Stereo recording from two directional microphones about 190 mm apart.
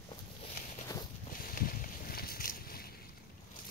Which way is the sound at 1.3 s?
50° left (ahead or behind).